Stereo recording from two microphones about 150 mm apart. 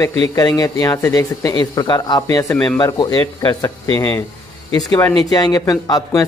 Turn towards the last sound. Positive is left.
turn(degrees=25)  # may be behind; listen again after turning